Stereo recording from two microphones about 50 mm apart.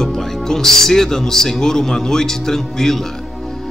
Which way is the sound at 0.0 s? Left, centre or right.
Centre.